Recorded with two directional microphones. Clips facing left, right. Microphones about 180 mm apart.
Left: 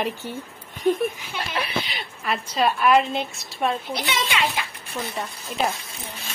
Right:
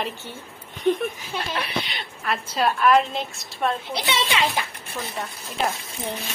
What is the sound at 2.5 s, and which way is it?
A woman's voice, centre (ahead or behind).